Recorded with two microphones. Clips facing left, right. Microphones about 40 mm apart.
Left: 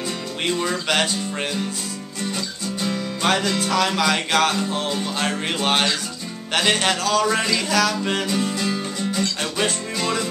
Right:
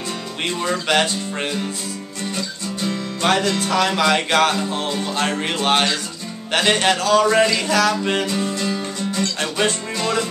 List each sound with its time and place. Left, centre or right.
0.5 s music: centre